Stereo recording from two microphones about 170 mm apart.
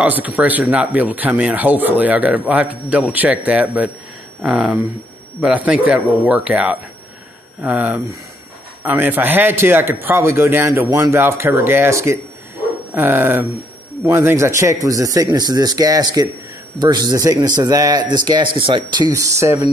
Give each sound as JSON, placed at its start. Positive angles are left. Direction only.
{"t": 0.0, "sound": "speech", "side_deg": -10}